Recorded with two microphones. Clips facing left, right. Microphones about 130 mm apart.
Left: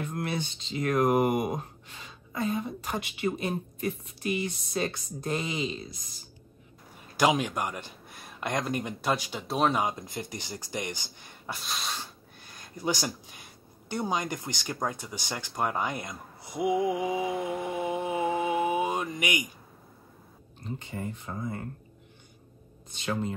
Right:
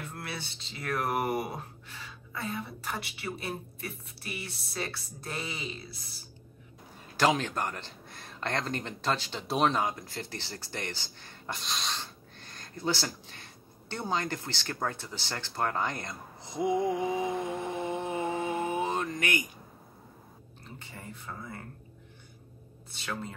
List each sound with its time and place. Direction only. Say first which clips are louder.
0.1 s speech: left 8 dB; 20° left (ahead or behind)
7.2 s a man's voice: left 2 dB; 15° left (ahead or behind)
9.5 s speech: left 1 dB; centre (ahead or behind)
9.8 s speech: left 2 dB; 20° left (ahead or behind)
20.6 s speech: left 10 dB; 20° left (ahead or behind)
22.8 s speech: left 6 dB; 20° left (ahead or behind)